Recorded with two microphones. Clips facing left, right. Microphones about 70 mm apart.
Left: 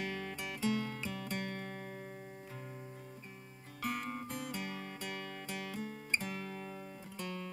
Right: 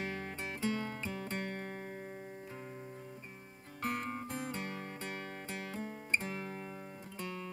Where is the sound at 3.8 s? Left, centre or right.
Right.